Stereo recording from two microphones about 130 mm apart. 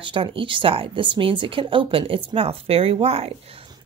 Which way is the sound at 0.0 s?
40° right (ahead or behind).